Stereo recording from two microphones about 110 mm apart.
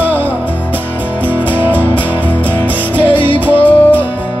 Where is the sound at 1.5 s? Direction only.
15° right (ahead or behind).